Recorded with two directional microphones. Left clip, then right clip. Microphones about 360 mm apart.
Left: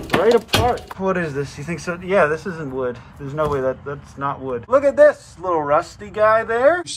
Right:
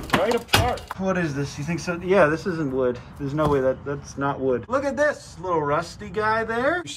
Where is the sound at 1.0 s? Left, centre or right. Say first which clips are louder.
Left 4 dB; centre.